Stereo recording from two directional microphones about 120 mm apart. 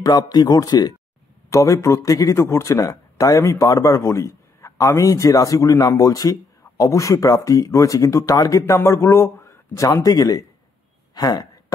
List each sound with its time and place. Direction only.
0.0 s speech: 30° left (ahead or behind)